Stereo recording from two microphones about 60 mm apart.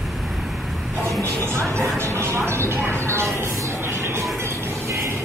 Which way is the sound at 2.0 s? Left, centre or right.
Right.